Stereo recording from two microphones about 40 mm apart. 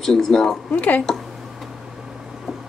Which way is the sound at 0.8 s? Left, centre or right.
Left.